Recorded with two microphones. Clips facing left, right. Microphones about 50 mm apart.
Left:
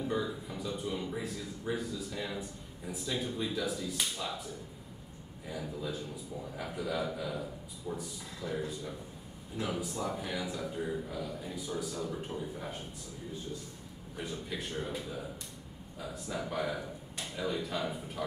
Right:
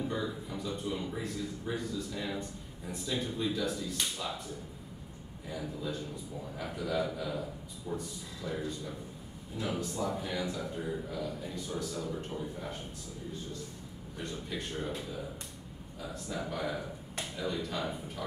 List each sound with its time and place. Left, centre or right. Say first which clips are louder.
0.1 s a man's voice: left 1 dB; centre
5.5 s a man's voice: even; centre
9.6 s a man's voice: right 1 dB; centre
14.1 s a man's voice: even; centre
16.4 s a man's voice: left 1 dB; centre